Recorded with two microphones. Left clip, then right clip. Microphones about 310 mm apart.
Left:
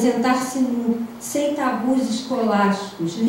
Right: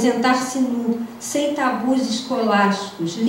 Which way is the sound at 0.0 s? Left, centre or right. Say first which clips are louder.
Right 1 dB; centre.